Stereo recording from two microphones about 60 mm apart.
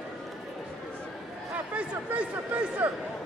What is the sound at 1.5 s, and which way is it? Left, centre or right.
Speech, right.